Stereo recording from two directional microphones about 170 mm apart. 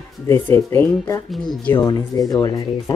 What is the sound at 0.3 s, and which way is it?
Speech, 15° left (ahead or behind).